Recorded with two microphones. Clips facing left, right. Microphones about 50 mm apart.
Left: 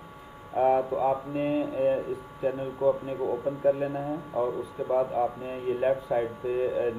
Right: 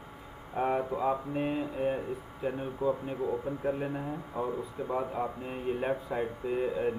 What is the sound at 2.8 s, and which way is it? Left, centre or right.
Speech, left.